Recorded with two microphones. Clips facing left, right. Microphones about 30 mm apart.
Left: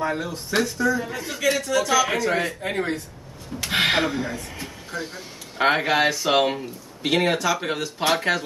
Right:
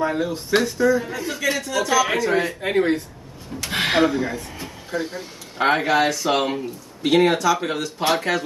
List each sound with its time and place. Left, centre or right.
0.2 s speech: right
0.6 s a man's voice: centre
3.6 s a sound: centre
4.0 s speech: centre
5.6 s a man's voice: centre